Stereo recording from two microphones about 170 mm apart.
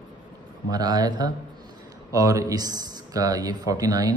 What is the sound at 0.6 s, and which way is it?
Speech, 25° right (ahead or behind).